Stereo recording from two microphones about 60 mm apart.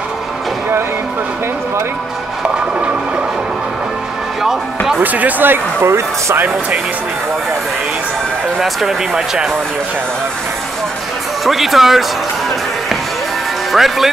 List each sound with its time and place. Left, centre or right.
4.4 s speech: centre
5.0 s speech: right
8.5 s speech: centre
11.4 s speech: centre
13.7 s speech: centre